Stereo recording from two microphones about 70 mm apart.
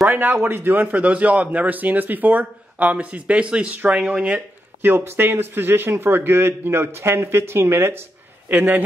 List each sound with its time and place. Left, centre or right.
0.1 s a man's voice: right
4.8 s a man's voice: right
8.5 s a man's voice: right